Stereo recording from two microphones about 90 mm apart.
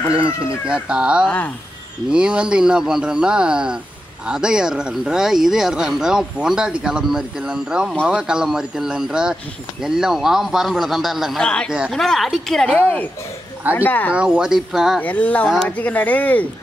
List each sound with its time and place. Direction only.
0.7 s speech: 10° right (ahead or behind)
11.4 s speech: 10° left (ahead or behind)
12.7 s speech: 15° left (ahead or behind)
14.1 s speech: 10° right (ahead or behind)
15.0 s speech: 15° left (ahead or behind)